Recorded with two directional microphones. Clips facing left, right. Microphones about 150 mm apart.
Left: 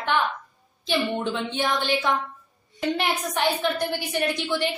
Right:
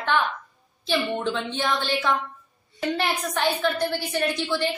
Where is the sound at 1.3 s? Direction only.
15° left (ahead or behind).